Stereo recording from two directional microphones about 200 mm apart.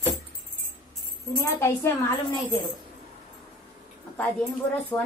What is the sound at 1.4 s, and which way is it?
Speech, 15° left (ahead or behind).